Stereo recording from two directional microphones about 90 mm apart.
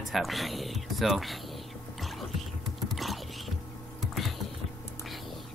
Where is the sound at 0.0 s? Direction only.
Centre (ahead or behind).